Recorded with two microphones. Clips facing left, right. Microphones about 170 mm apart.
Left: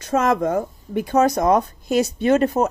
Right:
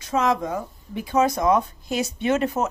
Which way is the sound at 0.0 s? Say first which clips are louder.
Left 4 dB; 50° left (ahead or behind).